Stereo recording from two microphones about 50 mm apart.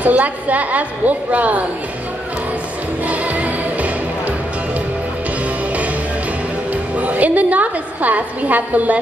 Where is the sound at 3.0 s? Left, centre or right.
Right.